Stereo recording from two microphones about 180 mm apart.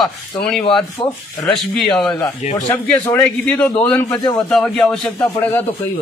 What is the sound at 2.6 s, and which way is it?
A man's voice, 15° left (ahead or behind).